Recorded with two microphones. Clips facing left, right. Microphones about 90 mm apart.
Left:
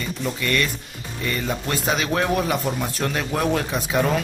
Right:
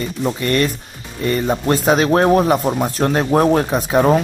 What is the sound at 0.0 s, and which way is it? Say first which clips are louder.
Speech: right 6 dB; 35° right (ahead or behind).